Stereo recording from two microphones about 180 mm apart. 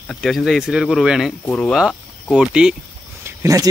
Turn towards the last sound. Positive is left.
turn(degrees=-15)  # may be behind; listen again after turning